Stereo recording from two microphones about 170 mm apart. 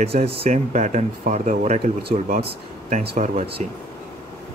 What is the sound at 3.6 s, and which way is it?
Speech, 45° right (ahead or behind).